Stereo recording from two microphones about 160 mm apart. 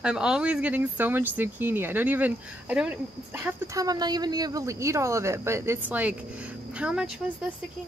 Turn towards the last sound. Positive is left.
turn(degrees=-5)  # may be behind; listen again after turning